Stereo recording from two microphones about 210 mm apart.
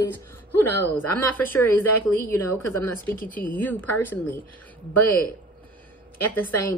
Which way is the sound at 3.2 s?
10° left (ahead or behind).